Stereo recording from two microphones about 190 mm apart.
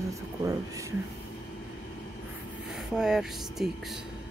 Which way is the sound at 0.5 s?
15° right (ahead or behind).